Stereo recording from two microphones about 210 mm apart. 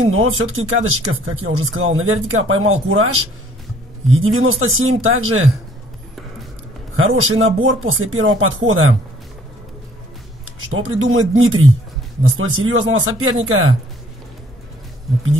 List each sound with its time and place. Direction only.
0.1 s speech: 70° right (ahead or behind)
7.0 s speech: 75° right (ahead or behind)
10.7 s speech: 70° right (ahead or behind)